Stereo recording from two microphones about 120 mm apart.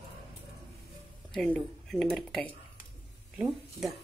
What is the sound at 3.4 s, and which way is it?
Speech, centre (ahead or behind).